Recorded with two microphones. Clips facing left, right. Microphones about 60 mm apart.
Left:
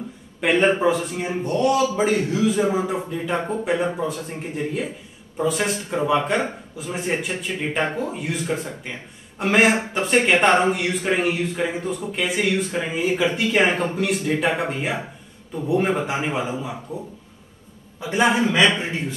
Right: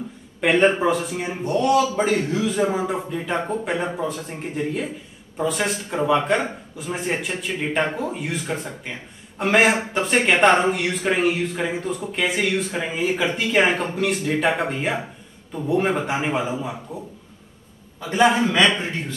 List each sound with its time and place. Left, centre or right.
0.4 s a man's voice: centre
18.0 s a man's voice: centre